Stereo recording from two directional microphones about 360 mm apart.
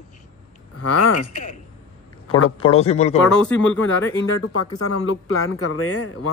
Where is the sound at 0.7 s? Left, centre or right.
Left.